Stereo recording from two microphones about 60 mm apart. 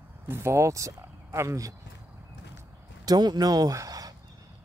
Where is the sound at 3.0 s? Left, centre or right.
Right.